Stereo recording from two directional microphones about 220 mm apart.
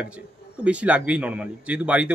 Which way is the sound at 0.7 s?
5° right (ahead or behind).